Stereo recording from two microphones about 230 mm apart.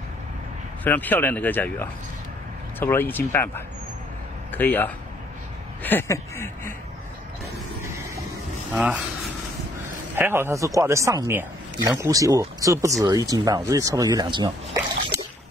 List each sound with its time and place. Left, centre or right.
0.8 s speech: centre
8.7 s speech: centre
10.1 s speech: centre